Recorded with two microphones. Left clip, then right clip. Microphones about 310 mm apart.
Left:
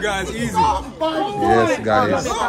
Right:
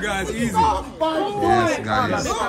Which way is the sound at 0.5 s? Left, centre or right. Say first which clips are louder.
Left 2 dB; left.